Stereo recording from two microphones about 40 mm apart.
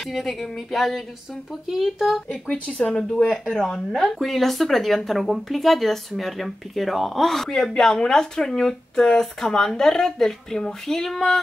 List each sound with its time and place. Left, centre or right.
0.0 s speech: centre
2.4 s speech: left
2.8 s a woman's voice: centre
4.2 s a woman's voice: centre